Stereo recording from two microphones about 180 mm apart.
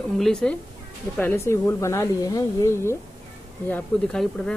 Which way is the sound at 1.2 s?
15° left (ahead or behind).